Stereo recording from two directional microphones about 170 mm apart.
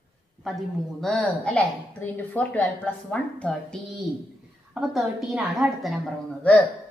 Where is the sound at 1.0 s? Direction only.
5° left (ahead or behind).